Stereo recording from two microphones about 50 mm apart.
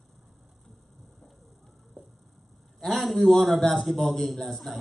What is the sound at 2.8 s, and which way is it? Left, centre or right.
A man's voice, centre.